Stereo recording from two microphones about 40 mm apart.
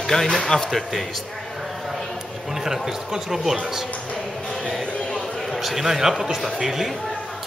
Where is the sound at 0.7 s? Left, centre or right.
Centre.